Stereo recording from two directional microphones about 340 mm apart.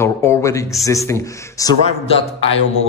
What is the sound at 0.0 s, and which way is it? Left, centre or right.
A man's voice, centre.